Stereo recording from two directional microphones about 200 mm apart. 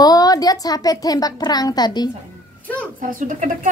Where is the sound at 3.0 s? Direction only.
40° right (ahead or behind).